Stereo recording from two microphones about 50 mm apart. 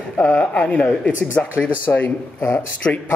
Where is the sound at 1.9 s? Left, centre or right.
Left.